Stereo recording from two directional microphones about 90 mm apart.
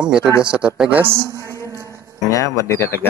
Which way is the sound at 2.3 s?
35° left (ahead or behind).